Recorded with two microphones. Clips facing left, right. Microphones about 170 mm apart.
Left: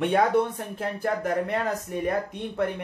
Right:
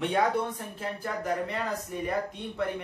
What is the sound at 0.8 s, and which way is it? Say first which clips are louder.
Speech: left 7 dB; 55° left (ahead or behind).